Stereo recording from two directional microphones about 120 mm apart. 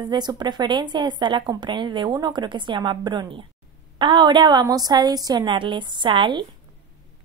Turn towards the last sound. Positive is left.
turn(degrees=-40)  # may be behind; listen again after turning